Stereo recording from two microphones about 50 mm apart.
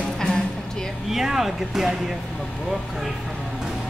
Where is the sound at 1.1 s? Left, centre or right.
Centre.